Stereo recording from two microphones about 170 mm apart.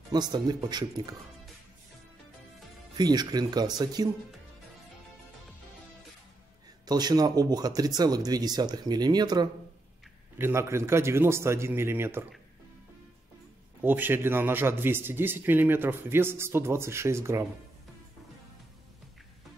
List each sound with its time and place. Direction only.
0.1 s speech: 25° right (ahead or behind)
3.0 s speech: 25° right (ahead or behind)
6.9 s speech: 25° right (ahead or behind)
10.3 s a man's voice: 15° right (ahead or behind)
13.8 s a man's voice: 10° right (ahead or behind)